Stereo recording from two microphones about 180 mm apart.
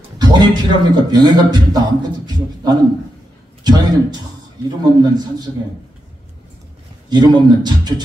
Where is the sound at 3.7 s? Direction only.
20° right (ahead or behind).